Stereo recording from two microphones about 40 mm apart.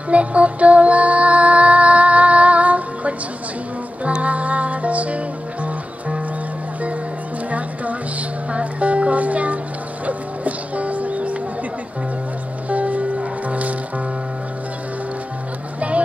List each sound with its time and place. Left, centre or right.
0.1 s music: right
7.5 s music: right
12.6 s music: right